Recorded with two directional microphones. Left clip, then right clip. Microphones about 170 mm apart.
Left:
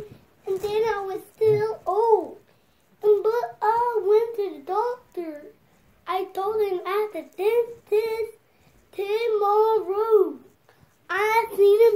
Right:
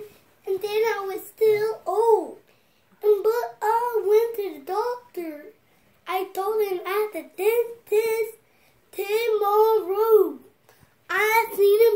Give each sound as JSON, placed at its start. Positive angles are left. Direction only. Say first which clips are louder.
{"t": 0.6, "sound": "a sound", "louder": "even", "side_deg": -25}
{"t": 8.9, "sound": "child singing", "louder": "even", "side_deg": -15}
{"t": 11.1, "sound": "child singing", "louder": "right 1 dB", "side_deg": -25}